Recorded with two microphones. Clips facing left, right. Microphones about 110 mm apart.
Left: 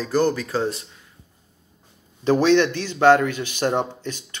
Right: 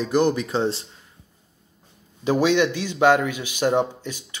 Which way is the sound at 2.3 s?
10° right (ahead or behind).